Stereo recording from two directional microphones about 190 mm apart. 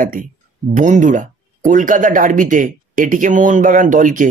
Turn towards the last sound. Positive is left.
turn(degrees=-45)  # may be behind; listen again after turning